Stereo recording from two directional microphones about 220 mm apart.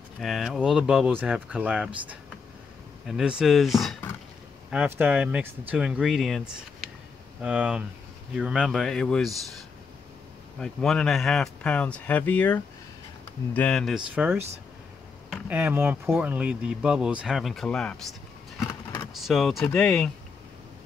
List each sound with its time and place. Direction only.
0.2 s speech: centre (ahead or behind)
10.6 s speech: 5° left (ahead or behind)
15.4 s speech: 10° right (ahead or behind)
19.2 s speech: centre (ahead or behind)